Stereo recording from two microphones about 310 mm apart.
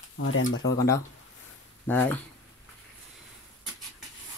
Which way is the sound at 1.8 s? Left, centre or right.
Centre.